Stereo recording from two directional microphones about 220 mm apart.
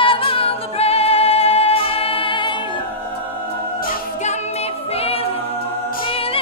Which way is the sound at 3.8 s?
35° left (ahead or behind).